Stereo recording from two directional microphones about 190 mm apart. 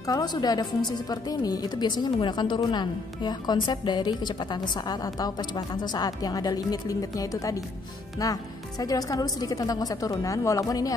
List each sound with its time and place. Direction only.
0.0 s a woman's voice: 20° left (ahead or behind)